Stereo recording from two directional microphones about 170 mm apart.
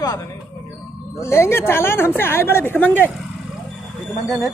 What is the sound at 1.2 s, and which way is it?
Speech, 15° left (ahead or behind).